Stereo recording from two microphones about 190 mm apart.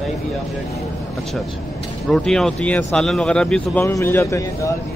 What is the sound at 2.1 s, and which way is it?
Speech, centre (ahead or behind).